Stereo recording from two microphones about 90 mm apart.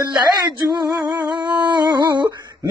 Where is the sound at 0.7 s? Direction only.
45° right (ahead or behind).